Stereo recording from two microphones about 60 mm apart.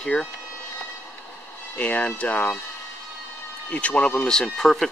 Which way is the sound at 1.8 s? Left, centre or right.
Left.